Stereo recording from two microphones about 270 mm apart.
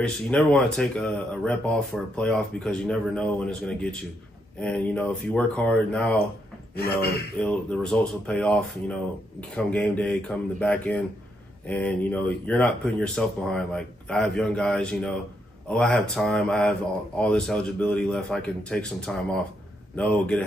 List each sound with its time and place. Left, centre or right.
0.0 s speech: centre
6.7 s speech: left
7.4 s speech: centre